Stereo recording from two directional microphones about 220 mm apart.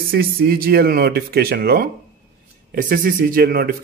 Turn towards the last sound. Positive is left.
turn(degrees=-45)  # may be behind; listen again after turning